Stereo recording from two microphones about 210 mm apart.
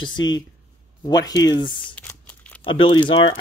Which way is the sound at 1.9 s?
5° left (ahead or behind).